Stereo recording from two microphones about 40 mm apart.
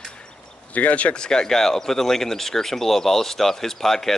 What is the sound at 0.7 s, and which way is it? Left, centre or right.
Speech, left.